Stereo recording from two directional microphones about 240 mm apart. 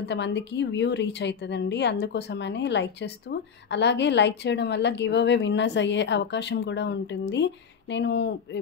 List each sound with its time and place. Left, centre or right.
0.1 s a woman's voice: left